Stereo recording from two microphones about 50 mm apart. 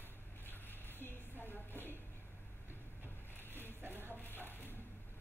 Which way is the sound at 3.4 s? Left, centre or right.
Left.